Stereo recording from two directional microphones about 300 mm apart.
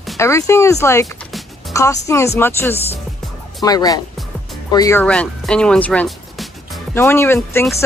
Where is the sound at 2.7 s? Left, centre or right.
Left.